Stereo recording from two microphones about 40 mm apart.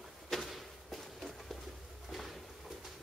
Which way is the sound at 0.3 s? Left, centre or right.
Centre.